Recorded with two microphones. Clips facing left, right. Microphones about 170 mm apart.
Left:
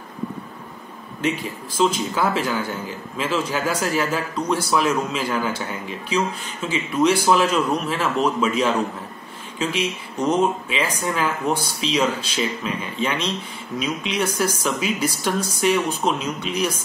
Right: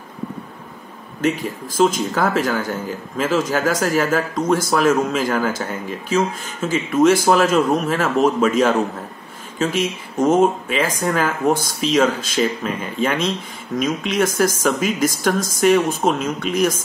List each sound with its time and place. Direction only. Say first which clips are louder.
1.4 s speech: right 3 dB; 45° right (ahead or behind)